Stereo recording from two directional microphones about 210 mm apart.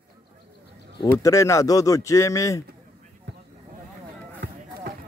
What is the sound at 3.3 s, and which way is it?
Vehicle, 55° right (ahead or behind).